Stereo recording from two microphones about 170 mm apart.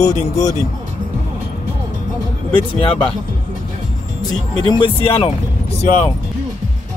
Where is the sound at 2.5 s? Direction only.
30° left (ahead or behind).